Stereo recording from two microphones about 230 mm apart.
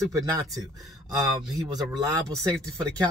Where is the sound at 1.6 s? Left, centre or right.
Centre.